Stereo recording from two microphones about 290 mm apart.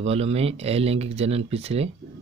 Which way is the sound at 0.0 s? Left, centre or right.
Right.